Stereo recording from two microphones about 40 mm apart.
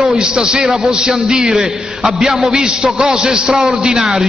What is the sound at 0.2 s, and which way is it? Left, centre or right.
A man's voice, centre.